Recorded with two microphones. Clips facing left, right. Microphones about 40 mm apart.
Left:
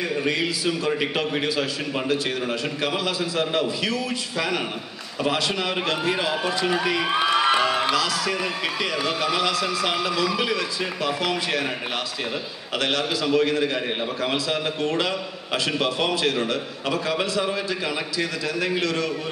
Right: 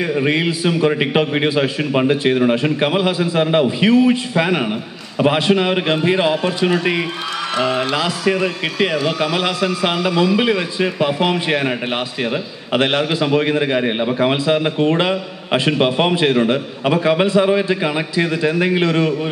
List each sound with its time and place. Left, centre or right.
0.2 s a man's voice: right
7.9 s a man's voice: right
12.7 s a man's voice: right